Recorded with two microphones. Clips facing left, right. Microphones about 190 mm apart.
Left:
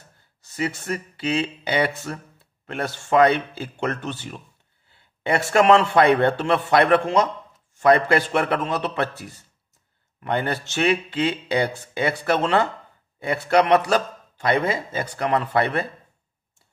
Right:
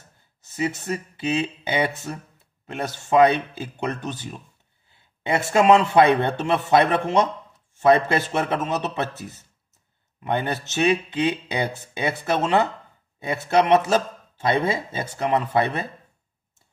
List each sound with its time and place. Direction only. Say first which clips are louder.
0.4 s speech: right 1 dB; 20° right (ahead or behind)